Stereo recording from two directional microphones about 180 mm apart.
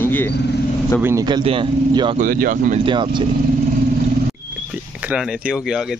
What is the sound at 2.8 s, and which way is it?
Speech, 25° right (ahead or behind).